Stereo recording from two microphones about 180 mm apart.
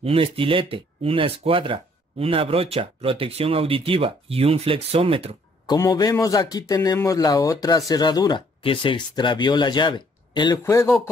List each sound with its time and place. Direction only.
0.0 s speech: 30° right (ahead or behind)
5.7 s speech: 20° left (ahead or behind)
10.6 s speech: 15° left (ahead or behind)